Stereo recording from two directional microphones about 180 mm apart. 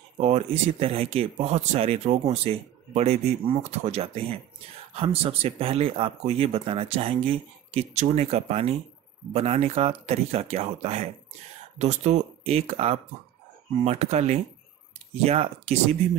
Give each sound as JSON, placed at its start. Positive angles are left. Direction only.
{"t": 0.2, "sound": "speech", "side_deg": -35}